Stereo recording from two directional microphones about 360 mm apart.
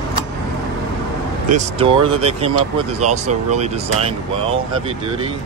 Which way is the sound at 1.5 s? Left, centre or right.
Centre.